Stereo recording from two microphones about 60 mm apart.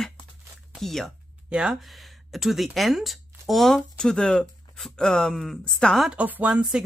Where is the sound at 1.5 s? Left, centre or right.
Centre.